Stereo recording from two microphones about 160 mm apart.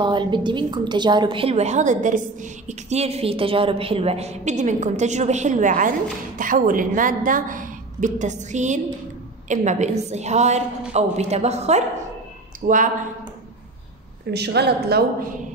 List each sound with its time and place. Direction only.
0.0 s a woman's voice: 30° right (ahead or behind)
12.6 s speech: 55° right (ahead or behind)
14.3 s a woman's voice: 90° right